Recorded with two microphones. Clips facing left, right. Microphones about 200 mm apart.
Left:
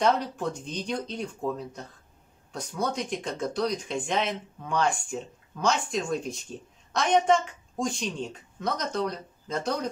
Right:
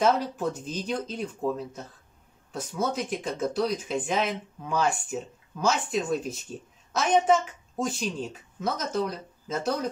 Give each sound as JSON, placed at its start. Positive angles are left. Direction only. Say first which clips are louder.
{"t": 0.0, "sound": "a woman's voice", "louder": "right 1 dB", "side_deg": -5}